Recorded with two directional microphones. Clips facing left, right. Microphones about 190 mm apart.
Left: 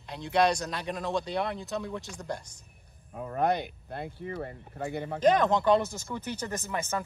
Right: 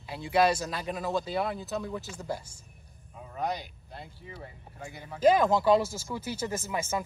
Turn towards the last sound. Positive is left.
turn(degrees=-10)  # may be behind; listen again after turning